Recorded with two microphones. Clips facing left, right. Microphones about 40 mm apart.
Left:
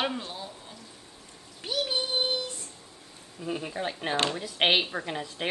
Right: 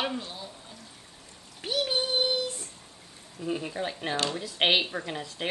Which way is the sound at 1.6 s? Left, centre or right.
Centre.